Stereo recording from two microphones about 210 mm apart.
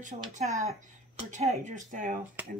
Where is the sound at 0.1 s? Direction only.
25° right (ahead or behind).